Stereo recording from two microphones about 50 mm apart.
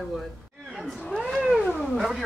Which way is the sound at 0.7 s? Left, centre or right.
Centre.